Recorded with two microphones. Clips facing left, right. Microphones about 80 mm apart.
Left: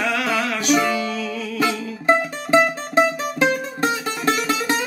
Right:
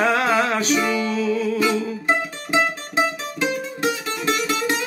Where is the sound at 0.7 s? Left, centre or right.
Left.